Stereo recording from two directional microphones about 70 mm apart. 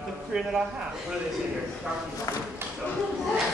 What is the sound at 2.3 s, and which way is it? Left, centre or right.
Speech, left.